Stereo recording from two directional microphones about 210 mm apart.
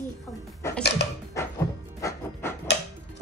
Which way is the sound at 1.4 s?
15° left (ahead or behind).